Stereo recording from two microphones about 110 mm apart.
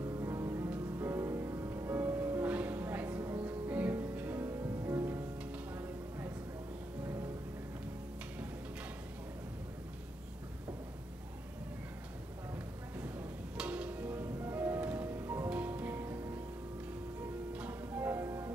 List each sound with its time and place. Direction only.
0.0 s music: 30° right (ahead or behind)
5.8 s a sound: 20° right (ahead or behind)
13.6 s music: 10° right (ahead or behind)
15.5 s music: 10° right (ahead or behind)
17.5 s music: 10° right (ahead or behind)